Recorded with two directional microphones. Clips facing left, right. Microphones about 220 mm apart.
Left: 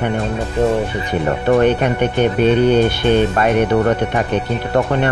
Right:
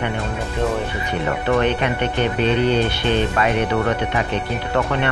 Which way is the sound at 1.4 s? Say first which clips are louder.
Left 6 dB; 45° left (ahead or behind).